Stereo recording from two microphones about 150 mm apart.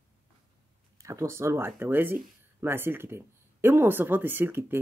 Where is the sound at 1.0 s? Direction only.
20° right (ahead or behind).